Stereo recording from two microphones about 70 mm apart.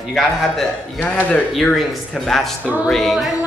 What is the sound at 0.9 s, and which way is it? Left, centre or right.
Speech, left.